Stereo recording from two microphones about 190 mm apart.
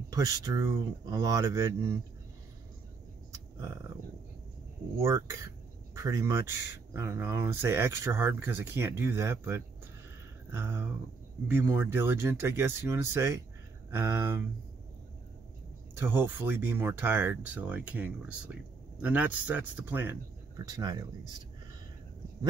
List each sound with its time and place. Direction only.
0.1 s speech: 15° right (ahead or behind)
3.3 s a sound: 15° right (ahead or behind)
4.9 s speech: 15° right (ahead or behind)
15.9 s speech: 10° right (ahead or behind)